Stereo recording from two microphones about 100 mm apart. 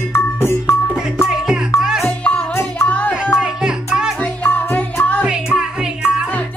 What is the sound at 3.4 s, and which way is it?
Music, 5° right (ahead or behind).